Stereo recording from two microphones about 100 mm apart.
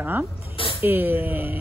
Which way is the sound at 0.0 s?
15° right (ahead or behind).